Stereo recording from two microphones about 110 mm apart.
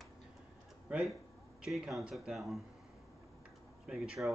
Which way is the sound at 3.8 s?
5° right (ahead or behind).